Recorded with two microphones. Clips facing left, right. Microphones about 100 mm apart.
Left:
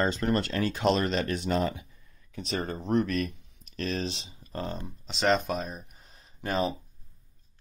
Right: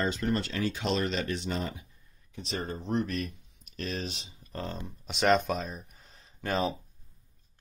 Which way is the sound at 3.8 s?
50° left (ahead or behind).